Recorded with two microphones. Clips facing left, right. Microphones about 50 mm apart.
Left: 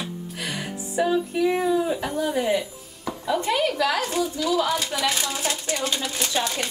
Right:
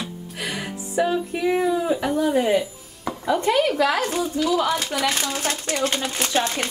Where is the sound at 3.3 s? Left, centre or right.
Right.